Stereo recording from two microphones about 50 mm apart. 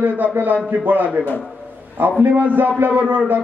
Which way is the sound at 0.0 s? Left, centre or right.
Right.